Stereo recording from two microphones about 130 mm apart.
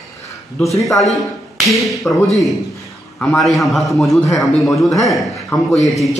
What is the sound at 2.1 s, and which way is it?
A man's voice, 10° left (ahead or behind).